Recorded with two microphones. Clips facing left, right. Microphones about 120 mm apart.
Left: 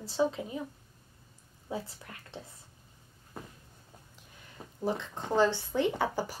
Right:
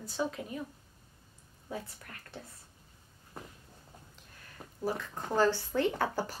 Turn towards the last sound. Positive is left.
turn(degrees=15)  # may be behind; listen again after turning